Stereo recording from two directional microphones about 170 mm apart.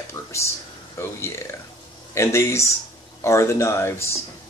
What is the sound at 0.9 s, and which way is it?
Speech, 15° left (ahead or behind).